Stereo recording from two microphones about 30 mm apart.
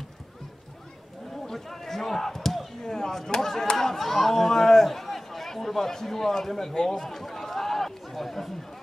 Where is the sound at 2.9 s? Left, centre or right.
Centre.